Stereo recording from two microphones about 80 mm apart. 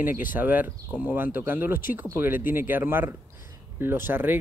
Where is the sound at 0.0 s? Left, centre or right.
Right.